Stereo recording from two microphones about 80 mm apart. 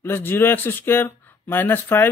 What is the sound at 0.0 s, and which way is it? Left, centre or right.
Speech, left.